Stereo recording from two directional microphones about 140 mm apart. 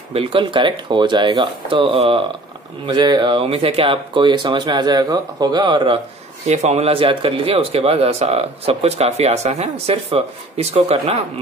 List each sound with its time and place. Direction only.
0.1 s speech: 40° right (ahead or behind)
6.4 s speech: 55° right (ahead or behind)